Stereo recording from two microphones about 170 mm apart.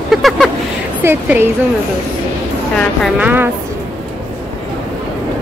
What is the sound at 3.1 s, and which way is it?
Speech, 10° right (ahead or behind).